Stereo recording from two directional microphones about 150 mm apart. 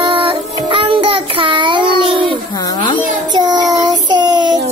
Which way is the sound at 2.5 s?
30° left (ahead or behind).